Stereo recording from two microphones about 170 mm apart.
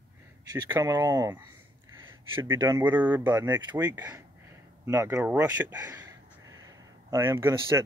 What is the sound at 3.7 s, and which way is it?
Speech, 25° right (ahead or behind).